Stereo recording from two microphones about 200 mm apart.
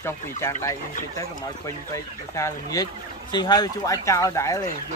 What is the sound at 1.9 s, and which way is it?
Speech, 15° left (ahead or behind).